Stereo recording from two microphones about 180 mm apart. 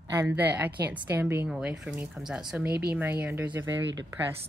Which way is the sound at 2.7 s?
60° right (ahead or behind).